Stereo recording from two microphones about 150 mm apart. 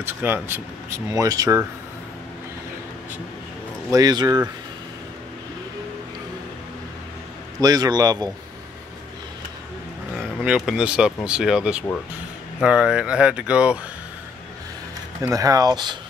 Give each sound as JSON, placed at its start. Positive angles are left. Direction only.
{"t": 0.0, "sound": "speech", "side_deg": -15}
{"t": 3.9, "sound": "speech", "side_deg": -25}
{"t": 7.6, "sound": "speech", "side_deg": -25}
{"t": 10.1, "sound": "speech", "side_deg": -5}
{"t": 15.2, "sound": "speech", "side_deg": -25}